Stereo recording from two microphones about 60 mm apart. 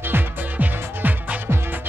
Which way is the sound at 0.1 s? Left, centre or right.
Right.